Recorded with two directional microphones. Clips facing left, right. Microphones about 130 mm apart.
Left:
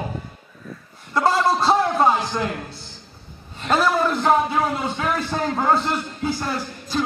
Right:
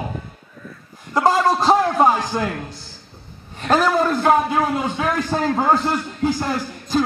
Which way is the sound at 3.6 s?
15° right (ahead or behind).